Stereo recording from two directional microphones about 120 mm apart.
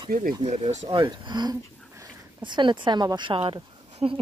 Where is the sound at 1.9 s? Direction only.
25° right (ahead or behind).